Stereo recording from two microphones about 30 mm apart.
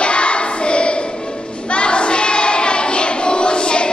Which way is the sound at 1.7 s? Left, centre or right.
Left.